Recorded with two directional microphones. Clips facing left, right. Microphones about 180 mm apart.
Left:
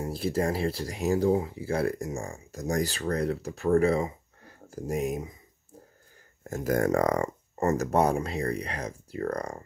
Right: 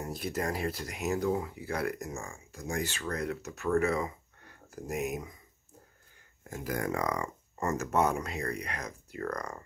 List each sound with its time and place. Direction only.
0.0 s speech: 30° left (ahead or behind)
6.4 s speech: 45° left (ahead or behind)